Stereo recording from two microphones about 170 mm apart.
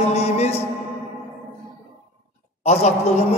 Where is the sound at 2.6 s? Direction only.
40° left (ahead or behind).